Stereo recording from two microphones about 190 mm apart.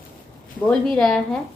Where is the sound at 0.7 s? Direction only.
5° left (ahead or behind).